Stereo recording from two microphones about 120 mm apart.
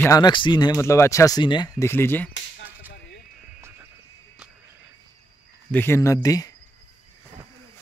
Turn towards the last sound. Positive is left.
turn(degrees=30)  # may be behind; listen again after turning